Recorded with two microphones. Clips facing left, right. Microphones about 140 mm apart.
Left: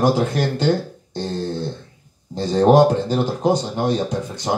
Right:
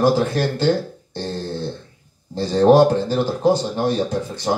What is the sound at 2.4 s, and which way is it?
A man's voice, 15° left (ahead or behind).